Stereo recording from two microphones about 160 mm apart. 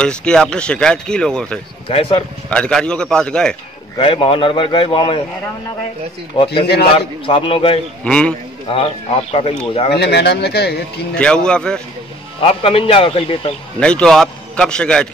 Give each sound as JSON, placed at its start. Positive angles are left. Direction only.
{"t": 0.0, "sound": "speech", "side_deg": 5}
{"t": 1.9, "sound": "a man's voice", "side_deg": 35}
{"t": 2.5, "sound": "speech", "side_deg": 5}
{"t": 4.0, "sound": "a man's voice", "side_deg": 35}
{"t": 6.3, "sound": "a man's voice", "side_deg": 35}
{"t": 6.6, "sound": "a man's voice", "side_deg": 80}
{"t": 6.9, "sound": "a man's voice", "side_deg": 35}
{"t": 8.0, "sound": "speech", "side_deg": 5}
{"t": 8.6, "sound": "a man's voice", "side_deg": 35}
{"t": 9.9, "sound": "a man's voice", "side_deg": 90}
{"t": 11.1, "sound": "speech", "side_deg": 5}
{"t": 12.4, "sound": "a man's voice", "side_deg": 35}
{"t": 13.7, "sound": "speech", "side_deg": 5}